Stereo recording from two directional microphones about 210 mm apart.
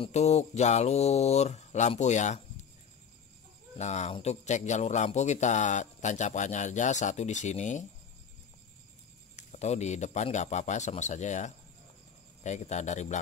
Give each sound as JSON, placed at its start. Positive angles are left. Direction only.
{"t": 0.0, "sound": "a man's voice", "side_deg": 30}
{"t": 3.7, "sound": "a man's voice", "side_deg": 35}
{"t": 9.4, "sound": "a man's voice", "side_deg": 35}